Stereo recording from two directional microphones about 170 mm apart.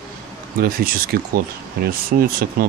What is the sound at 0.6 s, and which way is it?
Speech, 60° right (ahead or behind).